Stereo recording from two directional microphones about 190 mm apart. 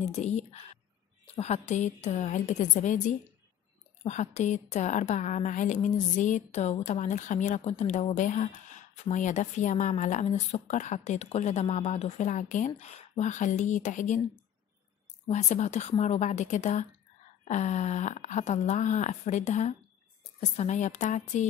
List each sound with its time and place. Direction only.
0.0 s a woman's voice: 35° left (ahead or behind)
15.2 s a woman's voice: 35° left (ahead or behind)